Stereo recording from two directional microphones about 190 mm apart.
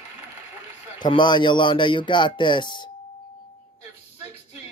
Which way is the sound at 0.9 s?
25° left (ahead or behind).